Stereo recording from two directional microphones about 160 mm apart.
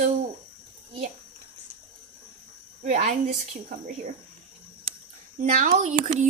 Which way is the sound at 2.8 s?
50° right (ahead or behind).